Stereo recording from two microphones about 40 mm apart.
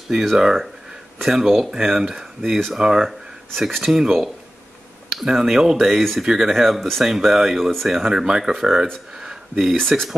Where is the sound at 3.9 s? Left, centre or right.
Right.